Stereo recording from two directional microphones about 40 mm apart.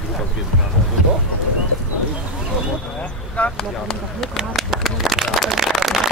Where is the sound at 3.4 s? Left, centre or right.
Left.